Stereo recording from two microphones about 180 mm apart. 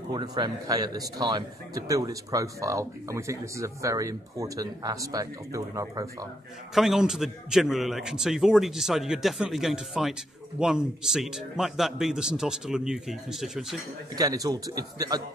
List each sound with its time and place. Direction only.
0.1 s a man's voice: 25° right (ahead or behind)
6.7 s a man's voice: centre (ahead or behind)
14.1 s a man's voice: 20° right (ahead or behind)